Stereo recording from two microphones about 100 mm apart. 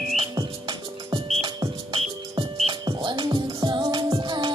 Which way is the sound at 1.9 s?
65° right (ahead or behind).